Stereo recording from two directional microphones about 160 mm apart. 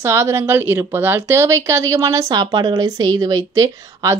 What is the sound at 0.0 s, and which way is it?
A woman's voice, 15° right (ahead or behind).